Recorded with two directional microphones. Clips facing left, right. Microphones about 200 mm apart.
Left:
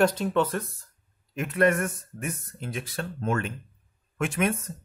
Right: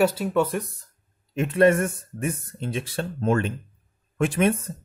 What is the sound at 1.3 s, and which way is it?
Speech, 25° right (ahead or behind).